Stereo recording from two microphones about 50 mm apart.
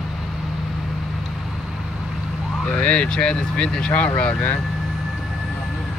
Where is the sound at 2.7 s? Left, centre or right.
Left.